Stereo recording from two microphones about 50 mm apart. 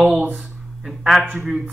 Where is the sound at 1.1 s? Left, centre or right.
Centre.